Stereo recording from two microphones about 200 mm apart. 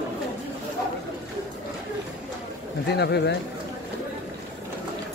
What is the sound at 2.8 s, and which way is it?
Speech, 55° left (ahead or behind).